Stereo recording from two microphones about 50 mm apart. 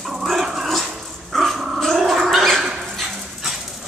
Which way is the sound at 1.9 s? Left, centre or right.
Centre.